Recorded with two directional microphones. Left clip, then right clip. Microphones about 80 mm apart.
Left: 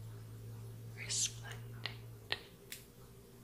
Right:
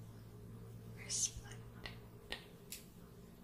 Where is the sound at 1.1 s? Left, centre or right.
Centre.